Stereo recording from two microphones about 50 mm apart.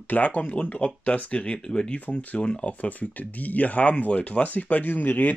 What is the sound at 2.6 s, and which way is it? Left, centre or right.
Speech, left.